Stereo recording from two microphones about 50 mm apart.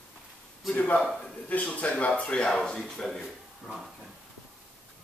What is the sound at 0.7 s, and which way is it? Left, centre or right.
Speech, left.